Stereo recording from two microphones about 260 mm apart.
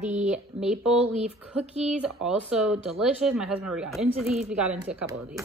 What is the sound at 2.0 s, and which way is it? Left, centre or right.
Speech, centre.